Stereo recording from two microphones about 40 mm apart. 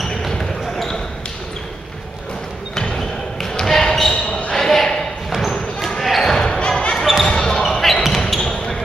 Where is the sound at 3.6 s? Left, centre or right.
Centre.